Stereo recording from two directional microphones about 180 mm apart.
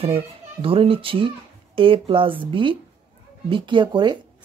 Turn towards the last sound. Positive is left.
turn(degrees=-25)  # may be behind; listen again after turning